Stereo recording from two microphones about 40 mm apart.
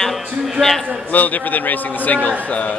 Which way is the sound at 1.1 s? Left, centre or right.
Left.